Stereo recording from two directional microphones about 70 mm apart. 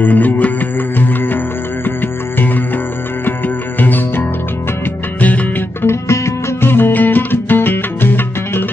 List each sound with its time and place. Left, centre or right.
0.0 s music: left
5.9 s music: left